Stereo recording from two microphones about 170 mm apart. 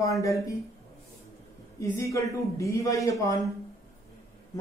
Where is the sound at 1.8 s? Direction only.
15° left (ahead or behind).